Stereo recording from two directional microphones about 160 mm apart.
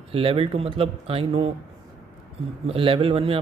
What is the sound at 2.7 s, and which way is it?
Speech, 35° right (ahead or behind).